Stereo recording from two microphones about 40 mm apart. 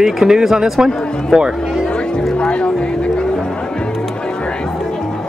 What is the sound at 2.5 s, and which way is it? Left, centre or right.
Speech, left.